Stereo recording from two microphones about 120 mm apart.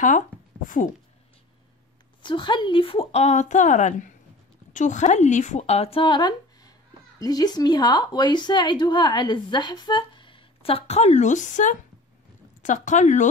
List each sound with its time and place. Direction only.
2.2 s a woman's voice: 40° left (ahead or behind); by 13.3 s 90° left